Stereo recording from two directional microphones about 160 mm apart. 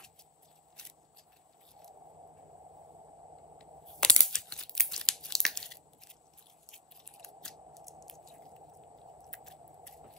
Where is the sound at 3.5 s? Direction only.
5° left (ahead or behind).